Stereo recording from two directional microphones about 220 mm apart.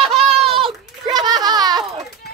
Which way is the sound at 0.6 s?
20° right (ahead or behind).